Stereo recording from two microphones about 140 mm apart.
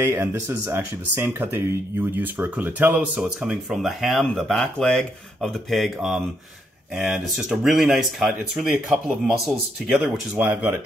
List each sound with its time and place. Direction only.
0.0 s speech: 15° right (ahead or behind); by 10.4 s centre (ahead or behind)
10.4 s speech: 15° right (ahead or behind)